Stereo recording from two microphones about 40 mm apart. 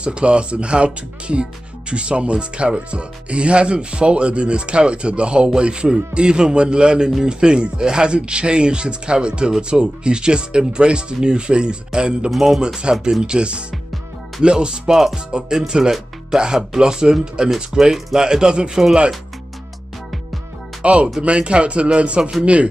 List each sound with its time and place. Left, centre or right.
0.0 s speech: right
12.3 s speech: centre
12.6 s speech: right
20.8 s speech: right